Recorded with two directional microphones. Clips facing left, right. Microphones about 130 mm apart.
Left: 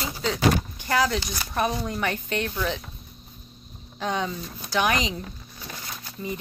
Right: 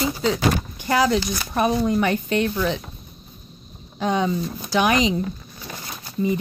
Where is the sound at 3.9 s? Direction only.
10° right (ahead or behind).